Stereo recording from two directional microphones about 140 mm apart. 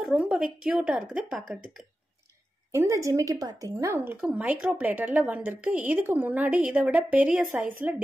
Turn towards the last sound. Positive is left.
turn(degrees=-10)  # may be behind; listen again after turning